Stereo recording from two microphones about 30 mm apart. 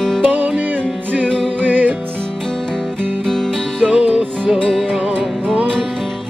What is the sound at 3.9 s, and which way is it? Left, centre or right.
Music, right.